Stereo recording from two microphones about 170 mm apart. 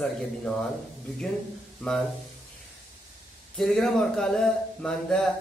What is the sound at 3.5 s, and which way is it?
Speech, 5° left (ahead or behind).